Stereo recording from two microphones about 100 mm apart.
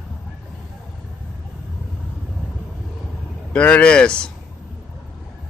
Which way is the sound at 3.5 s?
10° left (ahead or behind).